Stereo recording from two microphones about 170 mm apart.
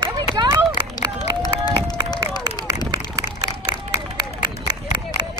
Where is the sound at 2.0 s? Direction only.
25° left (ahead or behind).